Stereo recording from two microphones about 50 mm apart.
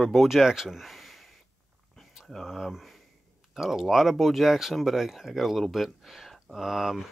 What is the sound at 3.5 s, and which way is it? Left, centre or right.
Speech, centre.